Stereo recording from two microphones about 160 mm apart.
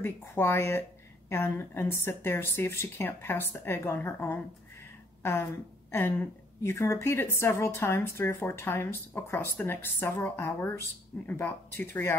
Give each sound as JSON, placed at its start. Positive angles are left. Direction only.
{"t": 0.0, "sound": "a woman's voice", "side_deg": 15}
{"t": 5.9, "sound": "a woman's voice", "side_deg": 15}